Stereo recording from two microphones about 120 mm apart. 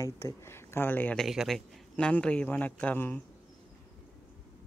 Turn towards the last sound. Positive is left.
turn(degrees=15)  # may be behind; listen again after turning